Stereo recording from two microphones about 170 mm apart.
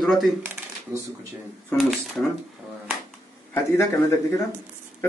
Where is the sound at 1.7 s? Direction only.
Centre (ahead or behind).